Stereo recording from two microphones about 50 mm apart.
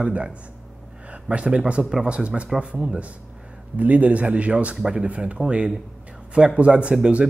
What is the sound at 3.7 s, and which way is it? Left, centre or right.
Speech, right.